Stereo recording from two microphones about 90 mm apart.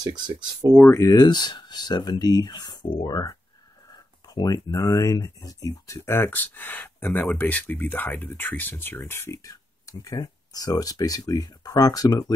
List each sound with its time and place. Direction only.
0.0 s speech: 50° right (ahead or behind)
0.8 s speech: 35° left (ahead or behind)
1.1 s speech: 50° left (ahead or behind)
4.3 s a sound: 45° left (ahead or behind)
4.6 s speech: 35° left (ahead or behind)